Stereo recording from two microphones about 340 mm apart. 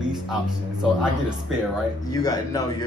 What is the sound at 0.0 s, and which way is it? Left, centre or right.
Music, centre.